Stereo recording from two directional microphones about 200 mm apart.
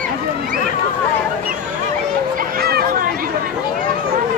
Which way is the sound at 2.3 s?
50° right (ahead or behind).